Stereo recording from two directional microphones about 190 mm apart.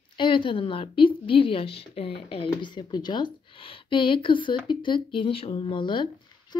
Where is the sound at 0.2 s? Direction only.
25° left (ahead or behind).